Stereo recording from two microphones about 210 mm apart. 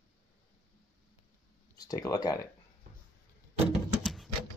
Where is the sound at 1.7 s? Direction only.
15° left (ahead or behind).